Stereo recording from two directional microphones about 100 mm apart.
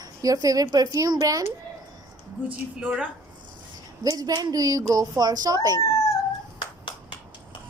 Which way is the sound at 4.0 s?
40° right (ahead or behind).